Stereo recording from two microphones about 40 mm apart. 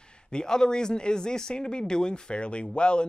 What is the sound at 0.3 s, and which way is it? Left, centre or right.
Speech, centre.